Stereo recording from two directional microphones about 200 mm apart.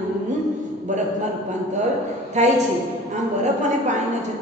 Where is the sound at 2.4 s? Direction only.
35° right (ahead or behind).